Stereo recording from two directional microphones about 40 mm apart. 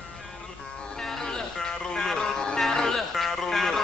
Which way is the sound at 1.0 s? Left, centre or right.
Centre.